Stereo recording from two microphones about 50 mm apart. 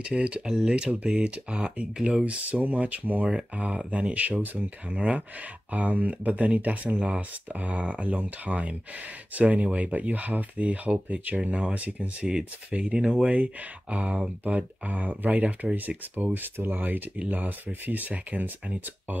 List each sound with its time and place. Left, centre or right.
0.0 s speech: right
12.3 s speech: centre
13.3 s speech: right